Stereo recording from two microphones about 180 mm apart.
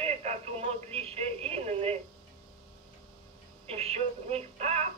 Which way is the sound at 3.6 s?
35° right (ahead or behind).